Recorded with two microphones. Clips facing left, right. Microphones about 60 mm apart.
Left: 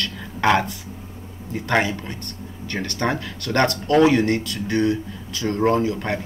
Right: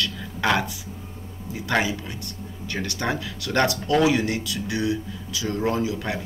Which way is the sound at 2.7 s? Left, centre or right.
Left.